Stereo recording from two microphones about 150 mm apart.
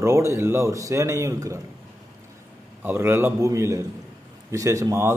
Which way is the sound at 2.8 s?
15° right (ahead or behind).